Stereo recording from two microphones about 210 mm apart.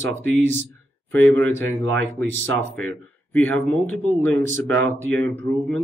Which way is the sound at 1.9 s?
60° right (ahead or behind).